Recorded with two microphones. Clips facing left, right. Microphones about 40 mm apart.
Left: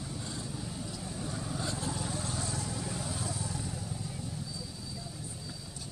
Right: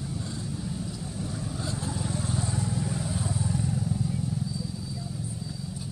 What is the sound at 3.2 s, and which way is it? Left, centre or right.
Vehicle, centre.